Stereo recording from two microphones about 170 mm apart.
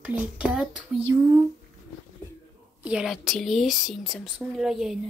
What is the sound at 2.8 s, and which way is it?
Speech, 5° right (ahead or behind).